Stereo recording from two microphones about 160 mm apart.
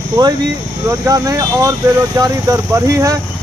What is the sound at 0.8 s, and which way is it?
Speech, 20° right (ahead or behind).